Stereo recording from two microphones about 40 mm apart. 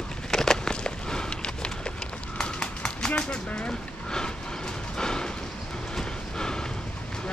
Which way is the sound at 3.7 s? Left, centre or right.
Centre.